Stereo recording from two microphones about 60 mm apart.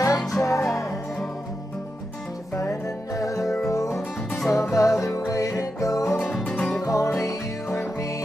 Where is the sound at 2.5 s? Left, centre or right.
Left.